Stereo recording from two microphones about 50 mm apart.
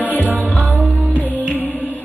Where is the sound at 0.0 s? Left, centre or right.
Left.